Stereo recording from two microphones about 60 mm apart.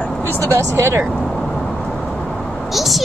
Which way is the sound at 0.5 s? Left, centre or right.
Right.